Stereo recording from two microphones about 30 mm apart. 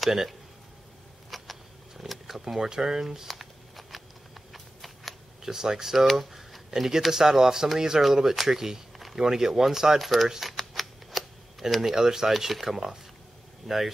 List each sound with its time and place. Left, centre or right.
1.3 s vehicle: centre
2.4 s speech: centre
3.3 s a sound: centre
5.4 s speech: centre
5.9 s a sound: centre
6.7 s speech: centre
9.9 s speech: centre
10.4 s a sound: centre
11.9 s speech: centre